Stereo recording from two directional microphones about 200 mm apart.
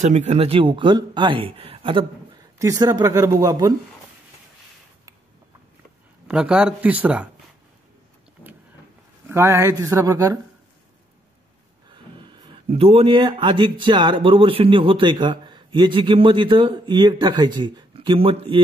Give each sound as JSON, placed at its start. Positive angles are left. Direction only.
{"t": 0.0, "sound": "a man's voice", "side_deg": -35}
{"t": 6.2, "sound": "speech", "side_deg": -5}
{"t": 9.3, "sound": "speech", "side_deg": -15}
{"t": 11.9, "sound": "speech", "side_deg": -25}